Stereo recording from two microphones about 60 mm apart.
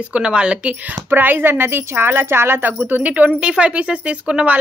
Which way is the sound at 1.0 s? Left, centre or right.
Right.